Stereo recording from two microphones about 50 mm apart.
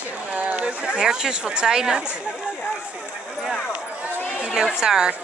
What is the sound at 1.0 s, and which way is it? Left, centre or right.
A woman's voice, centre.